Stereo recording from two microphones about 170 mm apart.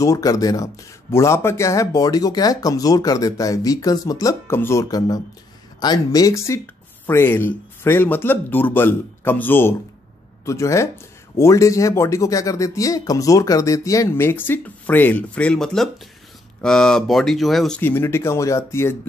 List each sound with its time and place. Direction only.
0.0 s speech: 20° left (ahead or behind)